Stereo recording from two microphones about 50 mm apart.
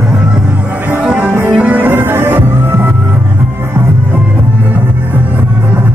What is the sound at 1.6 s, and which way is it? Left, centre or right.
Music, right.